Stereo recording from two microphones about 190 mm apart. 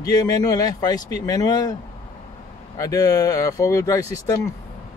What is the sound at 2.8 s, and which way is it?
Speech, 20° left (ahead or behind).